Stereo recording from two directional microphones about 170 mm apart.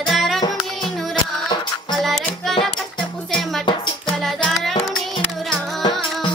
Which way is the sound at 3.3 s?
Centre (ahead or behind).